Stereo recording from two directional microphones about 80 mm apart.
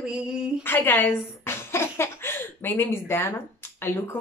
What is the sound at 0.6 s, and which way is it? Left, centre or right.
Speech, left.